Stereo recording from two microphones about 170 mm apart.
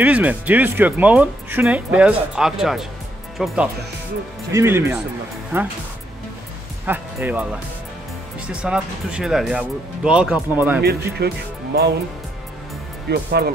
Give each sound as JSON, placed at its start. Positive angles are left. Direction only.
{"t": 0.0, "sound": "speech", "side_deg": -10}
{"t": 4.5, "sound": "speech", "side_deg": -15}
{"t": 6.9, "sound": "speech", "side_deg": -10}
{"t": 8.6, "sound": "speech", "side_deg": -5}
{"t": 10.8, "sound": "speech", "side_deg": -70}
{"t": 13.1, "sound": "speech", "side_deg": -75}